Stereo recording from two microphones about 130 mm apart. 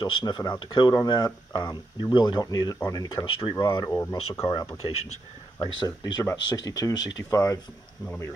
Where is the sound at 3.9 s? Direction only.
20° left (ahead or behind).